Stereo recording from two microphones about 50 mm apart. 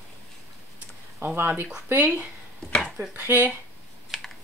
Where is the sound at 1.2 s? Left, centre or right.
Right.